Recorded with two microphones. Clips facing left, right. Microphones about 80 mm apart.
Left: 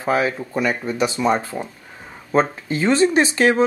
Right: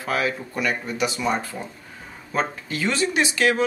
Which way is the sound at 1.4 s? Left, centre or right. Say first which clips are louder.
Left 5 dB; centre.